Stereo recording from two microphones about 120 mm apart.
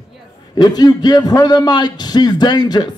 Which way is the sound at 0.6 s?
35° left (ahead or behind).